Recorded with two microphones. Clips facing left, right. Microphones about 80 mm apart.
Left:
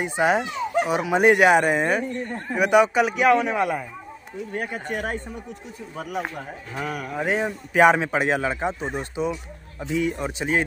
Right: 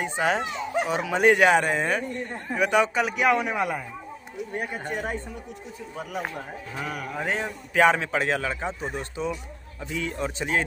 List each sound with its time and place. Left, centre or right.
0.0 s a man's voice: centre
4.6 s speech: left
6.1 s speech: centre